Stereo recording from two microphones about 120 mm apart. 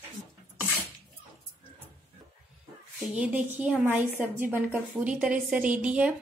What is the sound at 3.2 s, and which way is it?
A woman's voice, 10° right (ahead or behind).